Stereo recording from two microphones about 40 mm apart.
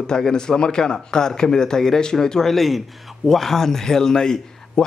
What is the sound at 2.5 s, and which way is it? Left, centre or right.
A man's voice, centre.